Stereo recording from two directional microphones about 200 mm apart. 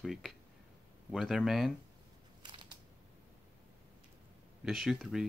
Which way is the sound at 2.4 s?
20° right (ahead or behind).